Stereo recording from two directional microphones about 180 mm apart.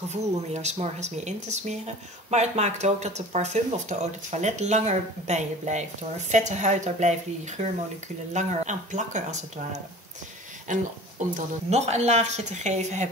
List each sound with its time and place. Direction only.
0.1 s speech: 40° right (ahead or behind)